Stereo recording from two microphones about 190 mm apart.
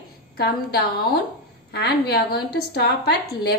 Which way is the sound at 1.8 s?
55° left (ahead or behind).